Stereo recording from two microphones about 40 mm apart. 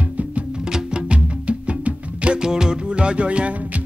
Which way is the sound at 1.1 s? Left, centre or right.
Right.